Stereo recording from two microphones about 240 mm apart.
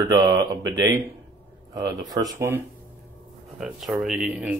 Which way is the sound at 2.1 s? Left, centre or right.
Centre.